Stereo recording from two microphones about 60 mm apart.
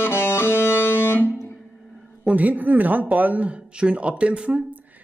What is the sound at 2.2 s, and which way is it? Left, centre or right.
Speech, right.